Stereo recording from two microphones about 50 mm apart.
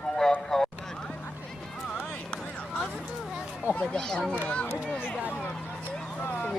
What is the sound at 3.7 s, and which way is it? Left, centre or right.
Speech, left.